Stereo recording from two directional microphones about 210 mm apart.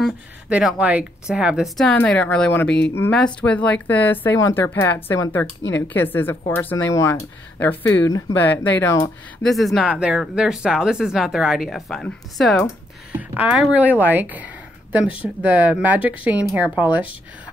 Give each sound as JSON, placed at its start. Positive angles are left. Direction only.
{"t": 0.0, "sound": "speech", "side_deg": -5}
{"t": 5.6, "sound": "speech", "side_deg": 60}
{"t": 5.9, "sound": "speech", "side_deg": 10}
{"t": 9.4, "sound": "speech", "side_deg": 0}
{"t": 13.2, "sound": "speech", "side_deg": -5}